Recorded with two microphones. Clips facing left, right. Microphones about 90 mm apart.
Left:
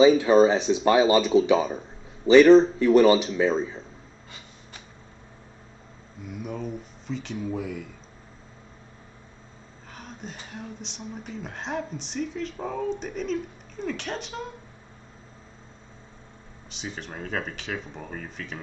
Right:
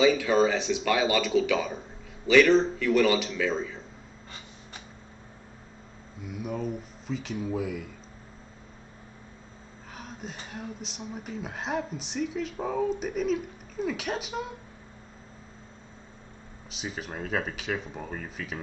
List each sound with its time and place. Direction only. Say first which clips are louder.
0.0 s speech: left 6 dB; 35° left (ahead or behind)
6.2 s speech: right 1 dB; centre (ahead or behind)
9.9 s speech: even; centre (ahead or behind)
16.7 s speech: even; 5° right (ahead or behind)